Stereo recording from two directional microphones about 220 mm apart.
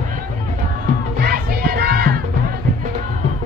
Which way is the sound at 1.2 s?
45° right (ahead or behind).